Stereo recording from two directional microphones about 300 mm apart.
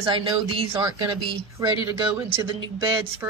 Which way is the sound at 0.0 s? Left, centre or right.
Centre.